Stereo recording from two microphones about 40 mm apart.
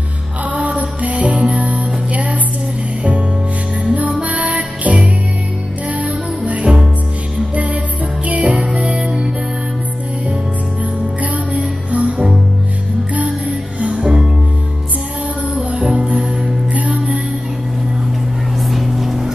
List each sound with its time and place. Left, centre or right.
0.5 s music: right
11.3 s music: right
15.5 s music: right
18.6 s vehicle: centre